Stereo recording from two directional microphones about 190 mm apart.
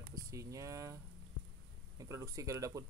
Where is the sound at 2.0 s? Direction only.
15° right (ahead or behind).